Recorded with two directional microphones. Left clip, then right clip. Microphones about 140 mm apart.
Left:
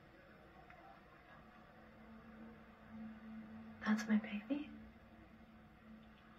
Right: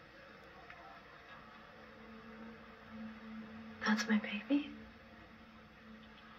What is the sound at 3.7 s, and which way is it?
Speech, 30° right (ahead or behind).